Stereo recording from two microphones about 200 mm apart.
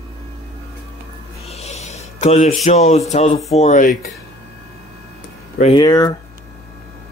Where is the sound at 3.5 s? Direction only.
35° left (ahead or behind).